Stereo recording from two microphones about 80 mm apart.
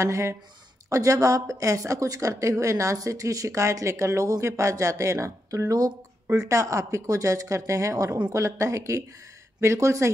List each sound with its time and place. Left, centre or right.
0.0 s a woman's voice: right